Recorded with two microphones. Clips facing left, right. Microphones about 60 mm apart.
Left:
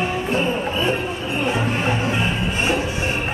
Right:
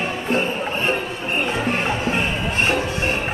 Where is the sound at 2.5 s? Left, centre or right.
Right.